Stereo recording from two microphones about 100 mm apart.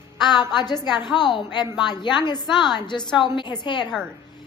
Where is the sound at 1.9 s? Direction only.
50° left (ahead or behind).